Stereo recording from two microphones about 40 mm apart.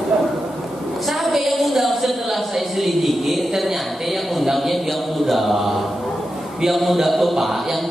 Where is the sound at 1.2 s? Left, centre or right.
Centre.